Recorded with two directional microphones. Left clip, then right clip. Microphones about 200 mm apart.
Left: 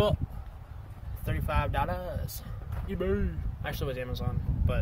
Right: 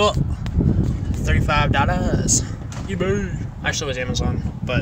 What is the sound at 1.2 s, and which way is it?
Speech, centre (ahead or behind).